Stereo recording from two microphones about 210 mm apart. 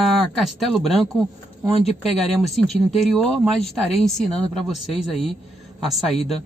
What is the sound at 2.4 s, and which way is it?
Speech, centre (ahead or behind).